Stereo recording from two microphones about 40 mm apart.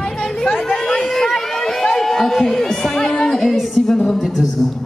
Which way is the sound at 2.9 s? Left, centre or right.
Centre.